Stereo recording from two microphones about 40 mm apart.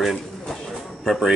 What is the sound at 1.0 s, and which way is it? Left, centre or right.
Speech, centre.